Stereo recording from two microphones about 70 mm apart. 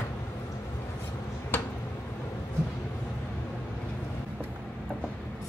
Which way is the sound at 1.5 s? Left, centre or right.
Left.